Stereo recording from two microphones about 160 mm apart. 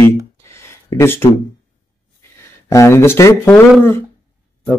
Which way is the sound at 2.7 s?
15° left (ahead or behind).